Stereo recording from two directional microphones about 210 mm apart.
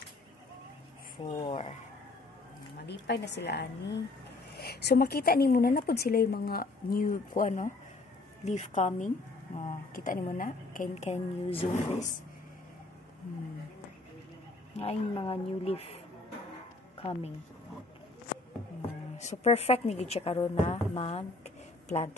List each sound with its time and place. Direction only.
1.4 s a woman's voice: 30° left (ahead or behind)
2.9 s a woman's voice: 55° left (ahead or behind); by 12.2 s 30° left (ahead or behind)
14.8 s a woman's voice: 25° left (ahead or behind)
19.1 s a woman's voice: 30° left (ahead or behind)